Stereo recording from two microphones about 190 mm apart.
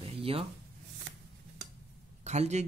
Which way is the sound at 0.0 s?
30° right (ahead or behind).